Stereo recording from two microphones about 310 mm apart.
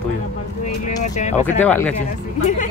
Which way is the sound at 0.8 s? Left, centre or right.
Left.